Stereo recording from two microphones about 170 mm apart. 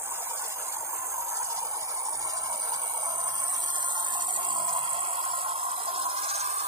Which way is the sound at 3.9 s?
25° right (ahead or behind).